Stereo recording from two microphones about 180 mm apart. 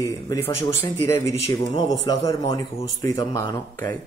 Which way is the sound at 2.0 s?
20° left (ahead or behind).